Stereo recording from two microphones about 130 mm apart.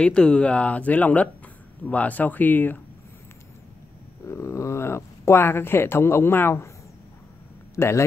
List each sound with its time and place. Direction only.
0.0 s speech: 5° left (ahead or behind)
4.3 s speech: 20° left (ahead or behind)
7.7 s speech: 20° left (ahead or behind)